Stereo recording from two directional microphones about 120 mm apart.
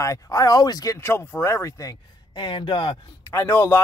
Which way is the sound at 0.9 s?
20° left (ahead or behind).